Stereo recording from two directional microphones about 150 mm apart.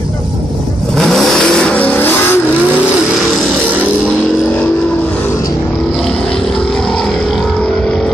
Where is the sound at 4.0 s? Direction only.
10° left (ahead or behind).